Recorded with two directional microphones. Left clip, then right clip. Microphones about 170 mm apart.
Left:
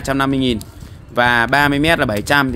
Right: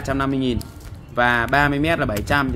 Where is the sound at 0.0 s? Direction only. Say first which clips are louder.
Left 5 dB; 55° left (ahead or behind).